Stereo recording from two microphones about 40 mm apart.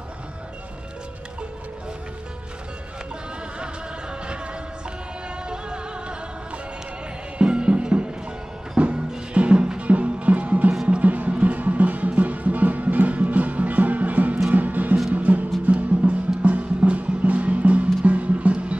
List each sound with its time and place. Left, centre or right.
5.5 s music: right
7.3 s music: right